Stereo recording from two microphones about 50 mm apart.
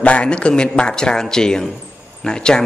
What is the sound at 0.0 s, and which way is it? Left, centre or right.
Speech, left.